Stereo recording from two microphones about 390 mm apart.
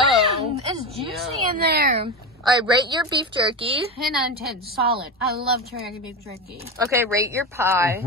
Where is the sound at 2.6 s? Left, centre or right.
Centre.